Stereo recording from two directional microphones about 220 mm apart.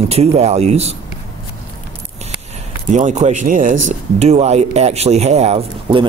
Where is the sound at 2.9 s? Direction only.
35° right (ahead or behind).